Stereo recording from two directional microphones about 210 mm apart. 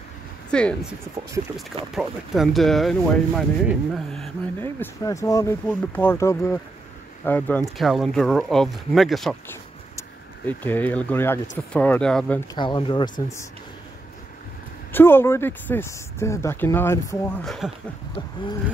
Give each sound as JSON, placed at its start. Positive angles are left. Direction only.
{"t": 0.5, "sound": "speech", "side_deg": 5}
{"t": 2.0, "sound": "speech", "side_deg": 0}
{"t": 9.5, "sound": "a sound", "side_deg": 10}
{"t": 11.7, "sound": "speech", "side_deg": 5}
{"t": 12.5, "sound": "speech", "side_deg": 20}
{"t": 14.9, "sound": "speech", "side_deg": 10}
{"t": 17.5, "sound": "speech", "side_deg": 0}